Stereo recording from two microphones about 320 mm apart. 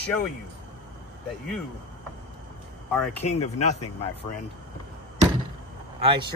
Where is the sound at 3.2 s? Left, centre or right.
Left.